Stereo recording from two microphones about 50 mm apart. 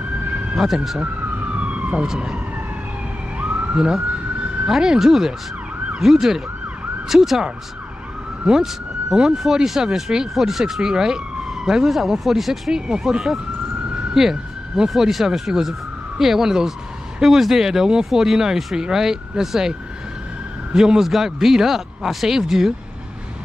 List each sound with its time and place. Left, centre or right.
1.5 s emergency vehicle: right
2.0 s speech: centre
3.3 s police car: right
3.7 s speech: centre
8.5 s speech: centre
14.1 s police car: centre
14.9 s speech: centre
20.7 s speech: centre